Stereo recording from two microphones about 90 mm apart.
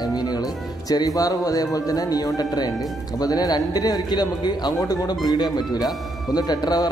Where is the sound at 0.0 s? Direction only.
50° left (ahead or behind).